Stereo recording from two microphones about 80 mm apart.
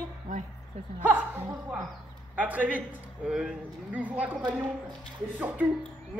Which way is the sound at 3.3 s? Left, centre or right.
Centre.